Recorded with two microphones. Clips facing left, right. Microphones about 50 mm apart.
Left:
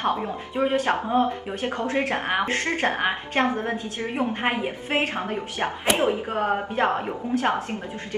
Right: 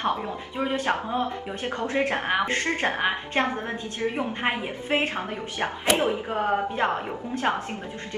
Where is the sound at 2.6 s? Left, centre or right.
Left.